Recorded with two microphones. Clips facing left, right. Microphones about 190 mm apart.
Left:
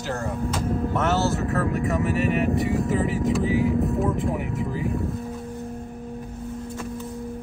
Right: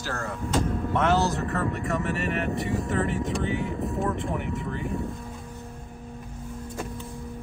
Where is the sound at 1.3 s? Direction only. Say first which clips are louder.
Left 4 dB; centre (ahead or behind).